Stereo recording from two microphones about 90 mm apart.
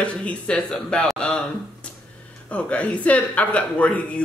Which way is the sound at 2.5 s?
15° left (ahead or behind).